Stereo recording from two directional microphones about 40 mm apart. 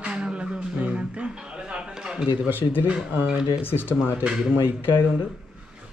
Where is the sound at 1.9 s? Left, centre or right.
Centre.